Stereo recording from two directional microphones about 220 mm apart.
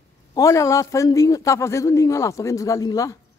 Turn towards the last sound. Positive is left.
turn(degrees=15)  # may be behind; listen again after turning